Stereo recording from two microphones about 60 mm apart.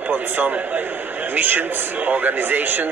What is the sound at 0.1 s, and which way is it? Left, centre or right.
A man's voice, right.